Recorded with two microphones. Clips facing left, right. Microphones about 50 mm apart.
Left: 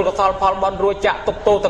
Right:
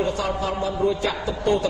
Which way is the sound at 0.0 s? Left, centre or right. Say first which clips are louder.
Left 8 dB; left.